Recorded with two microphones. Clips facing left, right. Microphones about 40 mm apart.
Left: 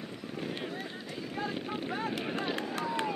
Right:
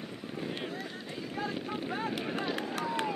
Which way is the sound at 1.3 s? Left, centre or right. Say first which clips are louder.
Even; centre.